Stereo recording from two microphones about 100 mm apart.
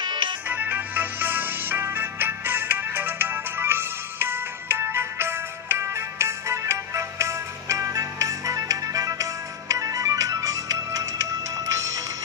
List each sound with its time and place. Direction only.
0.0 s music: 55° right (ahead or behind)
0.5 s music: 20° right (ahead or behind); by 11.8 s 35° right (ahead or behind)